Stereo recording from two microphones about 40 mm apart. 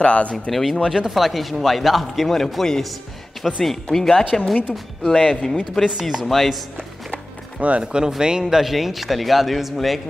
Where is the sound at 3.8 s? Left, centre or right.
Centre.